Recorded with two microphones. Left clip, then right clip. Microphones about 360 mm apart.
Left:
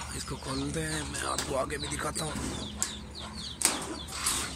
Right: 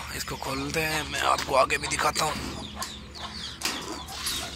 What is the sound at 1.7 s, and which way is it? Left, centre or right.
Speech, centre.